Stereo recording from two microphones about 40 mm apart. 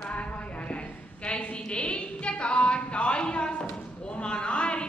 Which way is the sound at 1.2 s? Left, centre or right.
Left.